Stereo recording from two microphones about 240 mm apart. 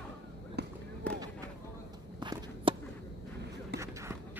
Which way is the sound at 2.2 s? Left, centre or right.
Centre.